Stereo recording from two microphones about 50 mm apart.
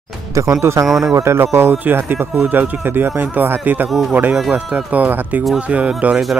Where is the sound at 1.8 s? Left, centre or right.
Right.